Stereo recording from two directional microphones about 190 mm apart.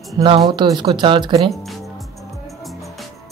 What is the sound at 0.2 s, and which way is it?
Speech, 25° right (ahead or behind).